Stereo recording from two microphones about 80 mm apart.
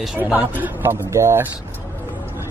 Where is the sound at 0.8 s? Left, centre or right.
Right.